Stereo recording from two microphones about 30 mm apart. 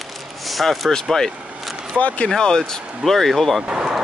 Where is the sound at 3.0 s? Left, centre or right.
Centre.